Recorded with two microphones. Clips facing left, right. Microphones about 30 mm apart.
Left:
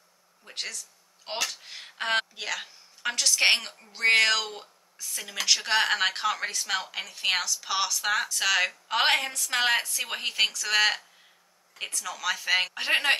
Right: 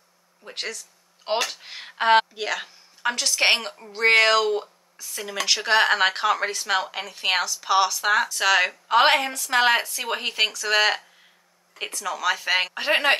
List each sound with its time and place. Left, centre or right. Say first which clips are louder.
0.5 s speech: right 4 dB; centre
1.2 s a woman's voice: right 7 dB; right; by 13.1 s centre